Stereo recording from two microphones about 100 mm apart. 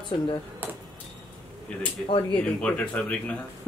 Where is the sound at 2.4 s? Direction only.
10° left (ahead or behind).